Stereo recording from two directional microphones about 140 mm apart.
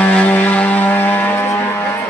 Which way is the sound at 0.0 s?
10° left (ahead or behind).